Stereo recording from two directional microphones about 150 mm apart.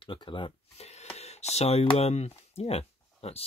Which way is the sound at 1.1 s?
45° left (ahead or behind).